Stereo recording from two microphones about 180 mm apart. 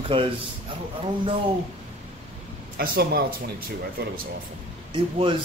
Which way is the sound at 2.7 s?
60° right (ahead or behind).